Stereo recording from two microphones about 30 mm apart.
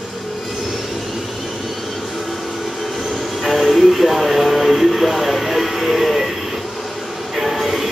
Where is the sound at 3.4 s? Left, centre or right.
Centre.